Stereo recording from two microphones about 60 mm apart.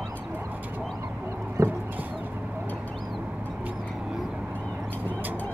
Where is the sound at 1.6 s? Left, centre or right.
Right.